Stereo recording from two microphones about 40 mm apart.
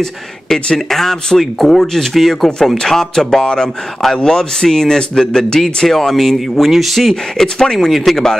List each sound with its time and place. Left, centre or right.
0.7 s speech: centre
7.3 s speech: centre